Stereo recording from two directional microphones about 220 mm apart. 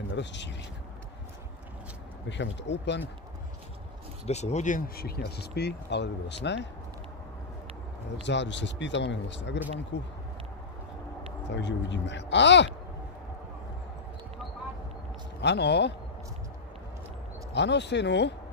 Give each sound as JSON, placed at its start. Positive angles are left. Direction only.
{"t": 0.1, "sound": "speech", "side_deg": 55}
{"t": 2.2, "sound": "speech", "side_deg": 55}
{"t": 4.3, "sound": "speech", "side_deg": 30}
{"t": 8.2, "sound": "speech", "side_deg": 55}
{"t": 11.4, "sound": "speech", "side_deg": 55}
{"t": 15.4, "sound": "speech", "side_deg": 50}
{"t": 17.6, "sound": "speech", "side_deg": 50}